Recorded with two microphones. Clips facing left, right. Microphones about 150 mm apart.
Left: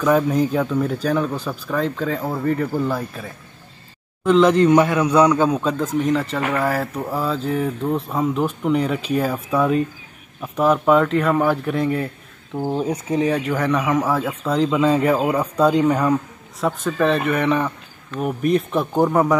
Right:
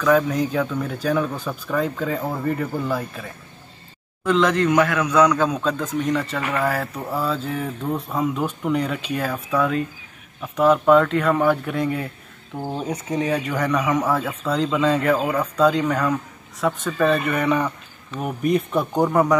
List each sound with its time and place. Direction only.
0.1 s speech: 5° left (ahead or behind)
1.8 s speech: 5° right (ahead or behind)
4.2 s speech: 10° left (ahead or behind)
4.6 s a man's voice: 25° left (ahead or behind)
5.3 s speech: 10° left (ahead or behind)
12.6 s speech: 10° left (ahead or behind)
13.1 s speech: centre (ahead or behind)
15.2 s speech: 15° left (ahead or behind)
16.6 s speech: centre (ahead or behind)